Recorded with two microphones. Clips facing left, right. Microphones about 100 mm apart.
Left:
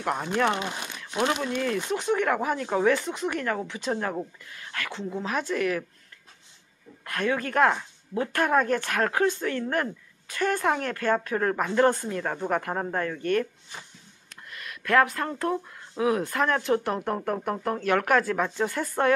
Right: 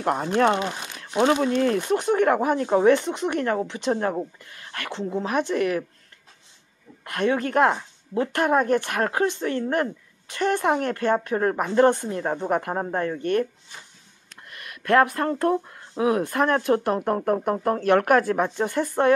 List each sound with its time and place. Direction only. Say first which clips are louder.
0.0 s speech: right 5 dB; 25° right (ahead or behind)
7.1 s speech: right 4 dB; 25° right (ahead or behind)
14.9 s speech: right 3 dB; 30° right (ahead or behind)